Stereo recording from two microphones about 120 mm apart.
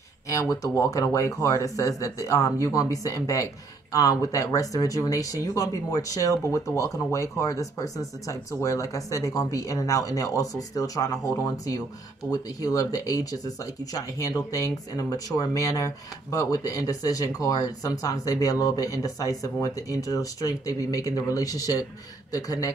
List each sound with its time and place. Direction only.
0.3 s speech: 30° left (ahead or behind)
12.3 s speech: 30° left (ahead or behind)